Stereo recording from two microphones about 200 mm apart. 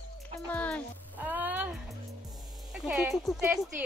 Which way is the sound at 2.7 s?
5° right (ahead or behind).